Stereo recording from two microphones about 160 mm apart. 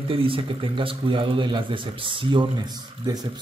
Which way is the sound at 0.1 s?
35° right (ahead or behind).